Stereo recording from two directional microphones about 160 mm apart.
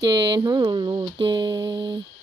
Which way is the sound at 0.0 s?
25° right (ahead or behind).